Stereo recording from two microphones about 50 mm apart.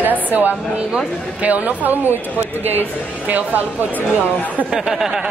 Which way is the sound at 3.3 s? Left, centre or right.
Right.